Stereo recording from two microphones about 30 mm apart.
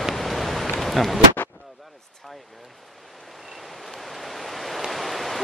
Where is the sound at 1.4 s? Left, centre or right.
Left.